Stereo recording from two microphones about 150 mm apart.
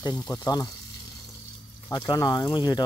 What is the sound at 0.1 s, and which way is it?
Speech, 20° left (ahead or behind).